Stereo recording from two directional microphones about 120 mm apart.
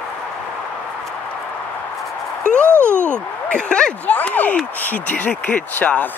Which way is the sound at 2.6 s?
20° right (ahead or behind).